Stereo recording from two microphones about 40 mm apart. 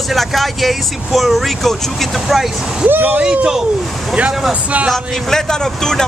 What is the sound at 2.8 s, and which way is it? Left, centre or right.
Speech, right.